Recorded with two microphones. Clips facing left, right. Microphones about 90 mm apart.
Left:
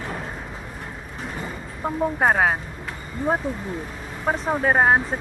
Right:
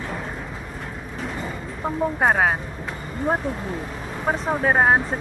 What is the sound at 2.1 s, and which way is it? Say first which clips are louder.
Speech: even; centre (ahead or behind).